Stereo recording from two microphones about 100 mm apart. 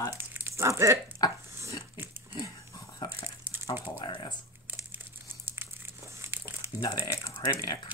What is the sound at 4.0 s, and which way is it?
Speech, 50° left (ahead or behind).